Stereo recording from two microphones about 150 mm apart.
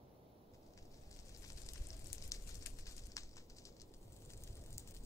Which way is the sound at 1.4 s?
20° left (ahead or behind).